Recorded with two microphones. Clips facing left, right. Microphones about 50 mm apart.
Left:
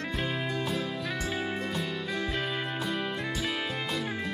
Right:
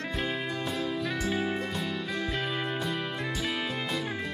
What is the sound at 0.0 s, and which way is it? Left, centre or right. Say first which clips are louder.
Music: even; centre.